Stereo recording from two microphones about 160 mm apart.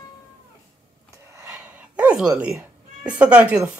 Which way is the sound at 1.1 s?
20° right (ahead or behind).